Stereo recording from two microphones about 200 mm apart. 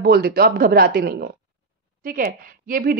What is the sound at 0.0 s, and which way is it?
A woman's voice, 50° right (ahead or behind).